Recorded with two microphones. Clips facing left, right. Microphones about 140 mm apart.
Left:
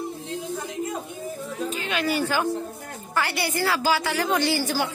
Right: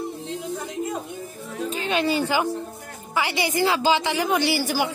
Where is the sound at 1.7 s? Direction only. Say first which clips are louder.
Right 4 dB; 30° right (ahead or behind).